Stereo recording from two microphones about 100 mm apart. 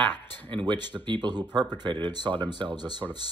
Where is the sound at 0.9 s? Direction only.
50° right (ahead or behind).